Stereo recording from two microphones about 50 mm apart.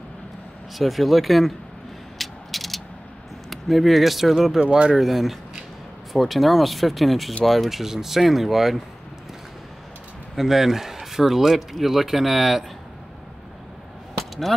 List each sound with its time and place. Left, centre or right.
0.7 s speech: centre
2.1 s ratchet: centre
3.4 s speech: centre
4.6 s speech: right
4.9 s speech: centre
10.3 s speech: centre
14.1 s a sound: centre